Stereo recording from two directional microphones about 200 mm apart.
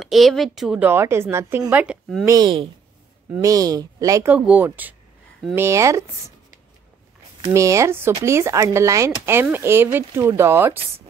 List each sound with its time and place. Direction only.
0.0 s speech: centre (ahead or behind)
2.2 s speech: 20° right (ahead or behind)
7.5 s speech: 15° right (ahead or behind)